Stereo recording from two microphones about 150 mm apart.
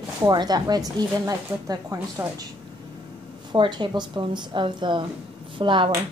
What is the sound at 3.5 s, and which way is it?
A woman's voice, 30° right (ahead or behind).